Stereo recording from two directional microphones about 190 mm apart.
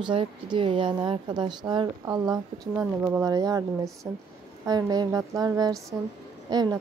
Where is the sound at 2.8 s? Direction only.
10° right (ahead or behind).